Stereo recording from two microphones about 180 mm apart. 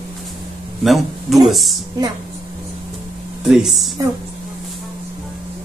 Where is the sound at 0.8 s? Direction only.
Centre (ahead or behind).